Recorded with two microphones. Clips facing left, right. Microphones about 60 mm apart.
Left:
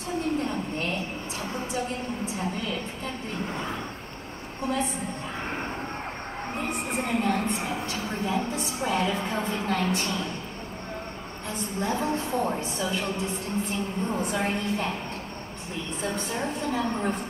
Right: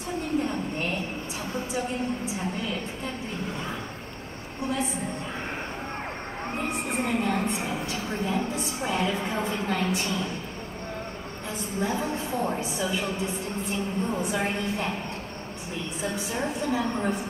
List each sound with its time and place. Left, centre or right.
0.4 s a sound: centre
2.3 s a woman's voice: centre
6.5 s a woman's voice: centre
11.5 s a woman's voice: centre
16.0 s a woman's voice: centre